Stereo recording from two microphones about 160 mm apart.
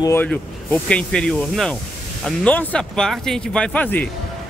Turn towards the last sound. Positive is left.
turn(degrees=10)  # may be behind; listen again after turning